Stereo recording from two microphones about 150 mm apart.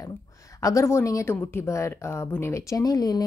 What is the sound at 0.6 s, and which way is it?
Speech, 20° left (ahead or behind).